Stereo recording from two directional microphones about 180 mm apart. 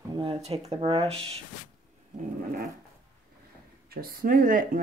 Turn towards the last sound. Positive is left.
turn(degrees=-50)  # may be behind; listen again after turning